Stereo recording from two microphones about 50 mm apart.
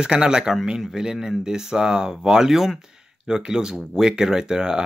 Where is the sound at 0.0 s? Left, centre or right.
Centre.